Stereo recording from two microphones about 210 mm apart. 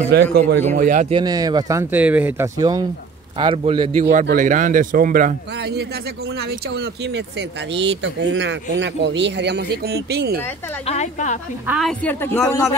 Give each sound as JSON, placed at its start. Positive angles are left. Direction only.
{"t": 0.1, "sound": "a man's voice", "side_deg": -50}
{"t": 1.1, "sound": "a man's voice", "side_deg": -20}
{"t": 4.1, "sound": "speech", "side_deg": -40}
{"t": 10.9, "sound": "a woman's voice", "side_deg": 35}
{"t": 11.6, "sound": "a woman's voice", "side_deg": -5}
{"t": 12.0, "sound": "speech", "side_deg": 10}